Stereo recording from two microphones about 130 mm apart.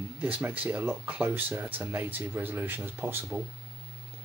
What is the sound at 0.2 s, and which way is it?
Speech, 15° right (ahead or behind).